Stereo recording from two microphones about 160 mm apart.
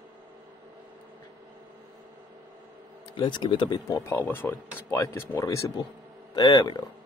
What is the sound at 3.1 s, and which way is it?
Speech, 30° left (ahead or behind).